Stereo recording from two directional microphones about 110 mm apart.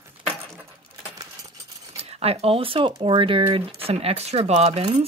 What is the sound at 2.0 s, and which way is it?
Speech, 70° right (ahead or behind).